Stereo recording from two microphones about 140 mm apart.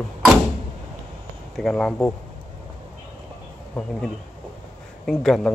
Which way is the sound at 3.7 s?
10° left (ahead or behind).